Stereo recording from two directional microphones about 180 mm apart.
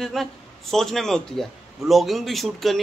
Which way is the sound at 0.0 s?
Centre (ahead or behind).